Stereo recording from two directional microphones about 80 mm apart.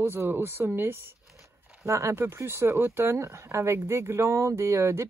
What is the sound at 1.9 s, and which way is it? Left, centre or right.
Speech, right.